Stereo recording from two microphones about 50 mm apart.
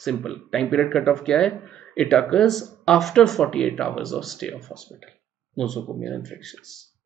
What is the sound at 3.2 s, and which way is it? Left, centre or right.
Speech, centre.